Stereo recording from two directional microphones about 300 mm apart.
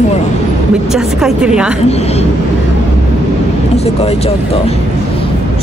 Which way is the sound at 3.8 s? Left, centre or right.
Centre.